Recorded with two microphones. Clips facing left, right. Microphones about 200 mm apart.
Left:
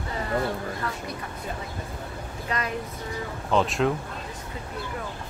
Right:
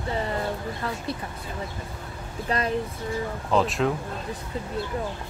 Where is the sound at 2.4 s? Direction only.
30° right (ahead or behind).